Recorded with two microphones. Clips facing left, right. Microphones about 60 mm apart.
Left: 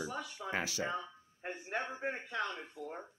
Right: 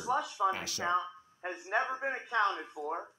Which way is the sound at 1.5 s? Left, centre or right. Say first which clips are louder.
Right 6 dB; right.